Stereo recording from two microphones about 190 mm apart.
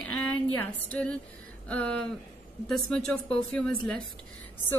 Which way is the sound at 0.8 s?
10° left (ahead or behind).